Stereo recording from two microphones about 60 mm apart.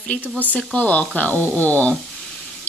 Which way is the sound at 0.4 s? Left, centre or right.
Left.